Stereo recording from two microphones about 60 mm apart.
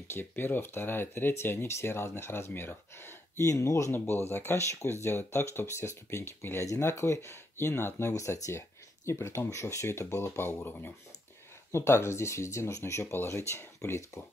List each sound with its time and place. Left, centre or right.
0.1 s speech: left
3.3 s speech: left
3.9 s speech: left
6.6 s speech: left
6.9 s speech: left
8.1 s speech: left
11.7 s speech: left